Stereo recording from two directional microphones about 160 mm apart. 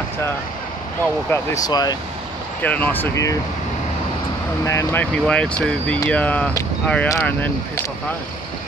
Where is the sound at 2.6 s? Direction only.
10° left (ahead or behind).